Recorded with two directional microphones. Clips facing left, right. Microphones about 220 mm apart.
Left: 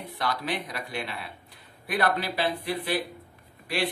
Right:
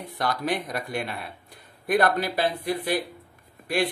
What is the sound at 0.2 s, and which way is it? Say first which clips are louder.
Speech: right 4 dB; 45° right (ahead or behind).